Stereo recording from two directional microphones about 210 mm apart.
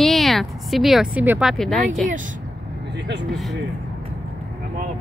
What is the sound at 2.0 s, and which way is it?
Speech, 40° right (ahead or behind).